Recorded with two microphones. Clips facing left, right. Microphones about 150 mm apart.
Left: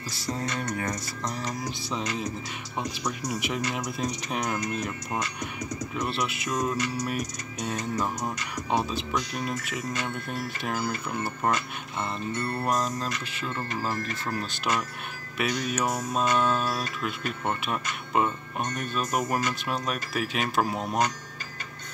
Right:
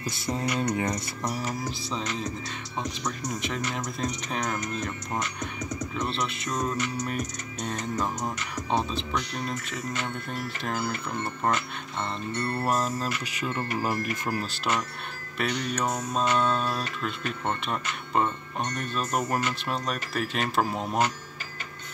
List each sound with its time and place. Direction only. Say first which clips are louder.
0.3 s speech: right 3 dB; 20° right (ahead or behind)
1.2 s speech: right 1 dB; 5° right (ahead or behind)
1.9 s mantra: left 2 dB; 10° left (ahead or behind)
12.6 s speech: even; 5° right (ahead or behind)
15.3 s mantra: left 1 dB; 10° left (ahead or behind)
19.2 s speech: even; centre (ahead or behind)